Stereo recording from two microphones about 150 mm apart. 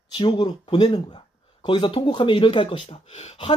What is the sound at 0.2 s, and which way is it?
Speech, 35° left (ahead or behind).